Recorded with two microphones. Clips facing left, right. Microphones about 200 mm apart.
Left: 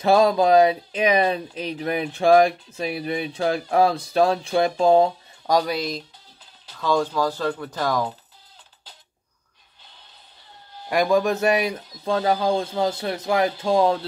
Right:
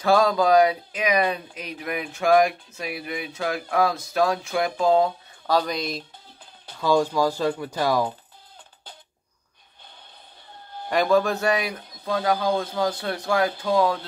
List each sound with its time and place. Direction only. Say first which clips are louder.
0.0 s speech: left 2 dB; 25° left (ahead or behind)
5.5 s speech: left 2 dB; 10° left (ahead or behind)
5.8 s speech: left 2 dB; centre (ahead or behind)
6.8 s speech: right 1 dB; 10° right (ahead or behind)
10.9 s speech: left 1 dB; 10° left (ahead or behind)